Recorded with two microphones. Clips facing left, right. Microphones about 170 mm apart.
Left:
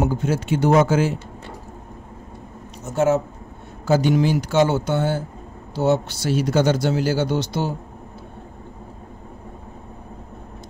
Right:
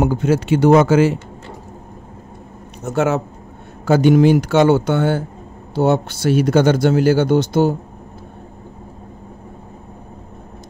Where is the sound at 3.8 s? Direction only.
60° right (ahead or behind).